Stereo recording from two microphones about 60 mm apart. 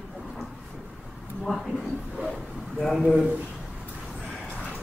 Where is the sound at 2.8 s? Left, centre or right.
Centre.